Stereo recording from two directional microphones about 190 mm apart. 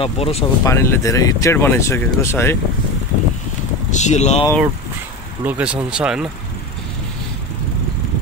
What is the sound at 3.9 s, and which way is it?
Speech, 35° left (ahead or behind).